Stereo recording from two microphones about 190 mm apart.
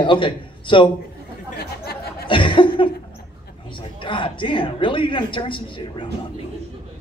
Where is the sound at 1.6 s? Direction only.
55° left (ahead or behind).